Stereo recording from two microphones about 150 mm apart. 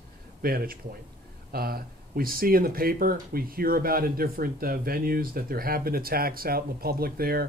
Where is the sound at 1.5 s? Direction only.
90° right.